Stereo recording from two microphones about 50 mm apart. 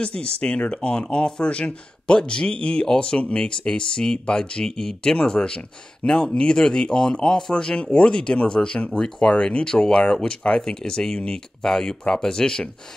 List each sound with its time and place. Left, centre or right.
0.0 s a man's voice: left